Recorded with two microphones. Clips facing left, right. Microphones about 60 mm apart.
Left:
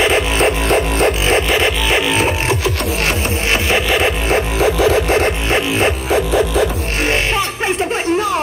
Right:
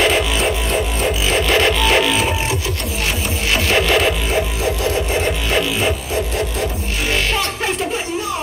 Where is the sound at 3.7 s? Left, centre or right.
Centre.